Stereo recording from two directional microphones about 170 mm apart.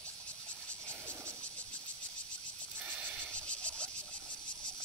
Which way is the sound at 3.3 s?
5° left (ahead or behind).